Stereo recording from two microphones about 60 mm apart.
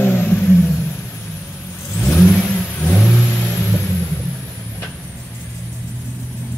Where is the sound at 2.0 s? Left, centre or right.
Left.